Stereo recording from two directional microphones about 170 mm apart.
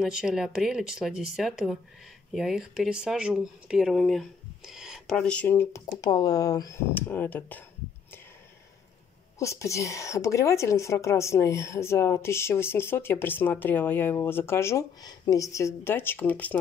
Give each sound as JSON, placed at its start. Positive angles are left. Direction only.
{"t": 0.0, "sound": "speech", "side_deg": -5}
{"t": 9.4, "sound": "speech", "side_deg": 15}